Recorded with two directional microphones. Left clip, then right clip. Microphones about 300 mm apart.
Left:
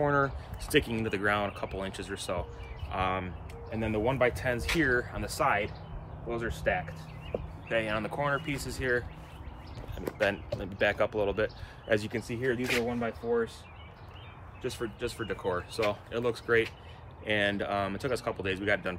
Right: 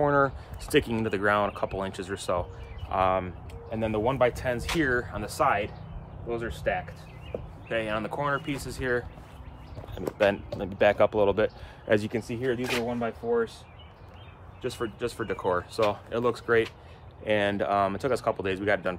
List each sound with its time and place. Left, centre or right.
0.0 s speech: centre
10.1 s speech: right; by 13.5 s centre
14.6 s speech: centre